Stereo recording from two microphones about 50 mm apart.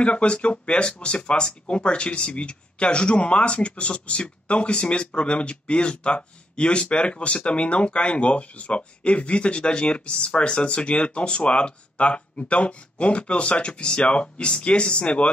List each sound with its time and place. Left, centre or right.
0.0 s speech: left